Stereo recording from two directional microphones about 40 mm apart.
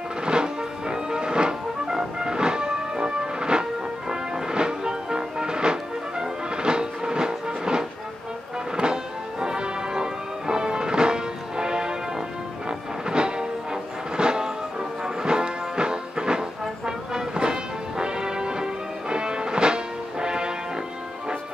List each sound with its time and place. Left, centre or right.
0.2 s music: right